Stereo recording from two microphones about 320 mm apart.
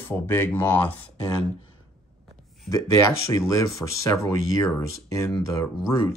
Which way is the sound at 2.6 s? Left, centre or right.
Centre.